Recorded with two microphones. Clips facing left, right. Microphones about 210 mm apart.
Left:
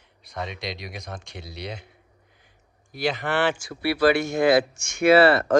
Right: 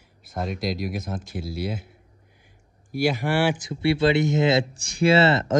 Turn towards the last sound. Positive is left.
turn(degrees=-25)  # may be behind; listen again after turning